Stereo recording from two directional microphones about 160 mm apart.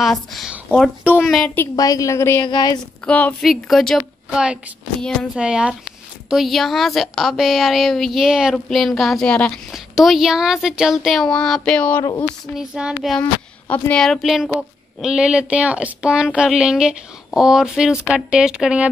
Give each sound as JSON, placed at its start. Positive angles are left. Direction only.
{"t": 0.0, "sound": "a woman's voice", "side_deg": 0}
{"t": 1.8, "sound": "a woman's voice", "side_deg": 20}
{"t": 3.1, "sound": "a woman's voice", "side_deg": 10}
{"t": 12.5, "sound": "a woman's voice", "side_deg": -5}